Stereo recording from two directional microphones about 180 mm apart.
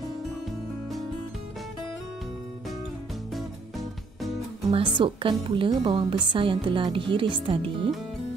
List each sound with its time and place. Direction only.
4.7 s a woman's voice: 30° right (ahead or behind)